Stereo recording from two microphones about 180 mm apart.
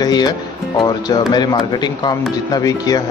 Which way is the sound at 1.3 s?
25° left (ahead or behind).